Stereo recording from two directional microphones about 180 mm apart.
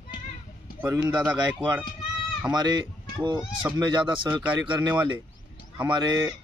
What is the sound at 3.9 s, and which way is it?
Speech, 25° right (ahead or behind).